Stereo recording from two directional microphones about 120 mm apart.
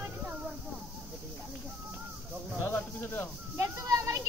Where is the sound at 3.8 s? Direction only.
30° right (ahead or behind).